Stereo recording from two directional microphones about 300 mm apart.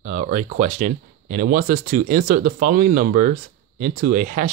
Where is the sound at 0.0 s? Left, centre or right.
Right.